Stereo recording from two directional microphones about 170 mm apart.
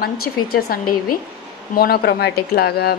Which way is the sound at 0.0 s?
60° left (ahead or behind).